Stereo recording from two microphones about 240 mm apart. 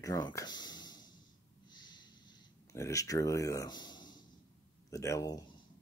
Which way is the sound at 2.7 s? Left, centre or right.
Centre.